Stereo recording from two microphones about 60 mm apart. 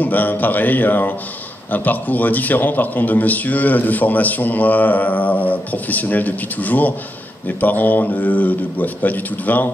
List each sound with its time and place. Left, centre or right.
0.0 s a man's voice: left